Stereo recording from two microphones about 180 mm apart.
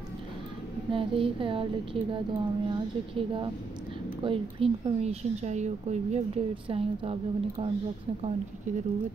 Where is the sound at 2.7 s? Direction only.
30° right (ahead or behind).